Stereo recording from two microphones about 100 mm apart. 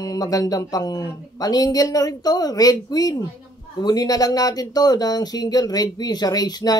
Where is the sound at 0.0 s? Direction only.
40° left (ahead or behind).